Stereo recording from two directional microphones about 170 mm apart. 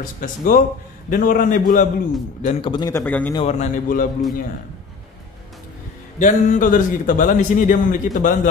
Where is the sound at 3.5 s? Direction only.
50° left (ahead or behind).